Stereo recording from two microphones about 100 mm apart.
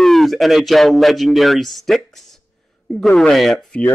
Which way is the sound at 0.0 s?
Centre (ahead or behind).